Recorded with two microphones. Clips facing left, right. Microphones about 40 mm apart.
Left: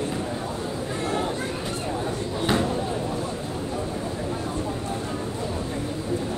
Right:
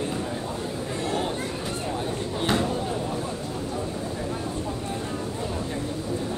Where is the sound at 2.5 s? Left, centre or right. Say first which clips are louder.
Left 1 dB; left.